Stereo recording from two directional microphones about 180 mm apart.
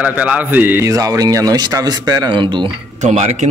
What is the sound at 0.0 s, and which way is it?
Speech, 5° right (ahead or behind).